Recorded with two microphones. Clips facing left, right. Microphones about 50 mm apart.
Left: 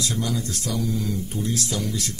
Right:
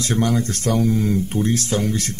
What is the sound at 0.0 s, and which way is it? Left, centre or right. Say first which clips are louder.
Speech: right 7 dB; right.